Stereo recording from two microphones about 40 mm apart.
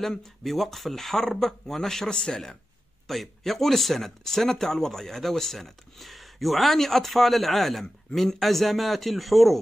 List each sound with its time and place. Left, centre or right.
0.0 s speech: centre
2.0 s speech: left
3.1 s a man's voice: centre